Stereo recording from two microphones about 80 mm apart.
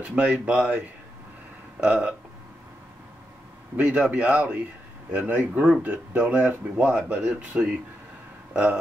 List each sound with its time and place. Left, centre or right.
0.0 s speech: centre
3.7 s speech: centre